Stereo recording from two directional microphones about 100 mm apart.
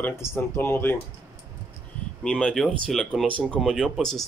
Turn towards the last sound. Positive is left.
turn(degrees=5)  # may be behind; listen again after turning